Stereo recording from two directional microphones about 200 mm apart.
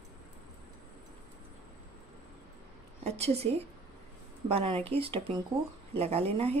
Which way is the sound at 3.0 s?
30° right (ahead or behind).